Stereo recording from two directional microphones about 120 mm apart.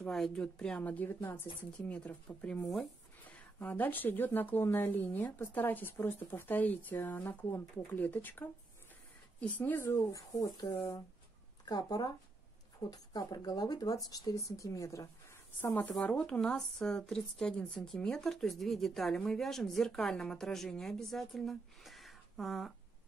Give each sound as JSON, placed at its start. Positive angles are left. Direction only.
{"t": 0.1, "sound": "speech", "side_deg": 5}
{"t": 1.2, "sound": "speech", "side_deg": 25}
{"t": 1.8, "sound": "speech", "side_deg": 10}
{"t": 2.6, "sound": "a woman's voice", "side_deg": 0}
{"t": 3.3, "sound": "speech", "side_deg": 15}
{"t": 15.6, "sound": "a woman's voice", "side_deg": 15}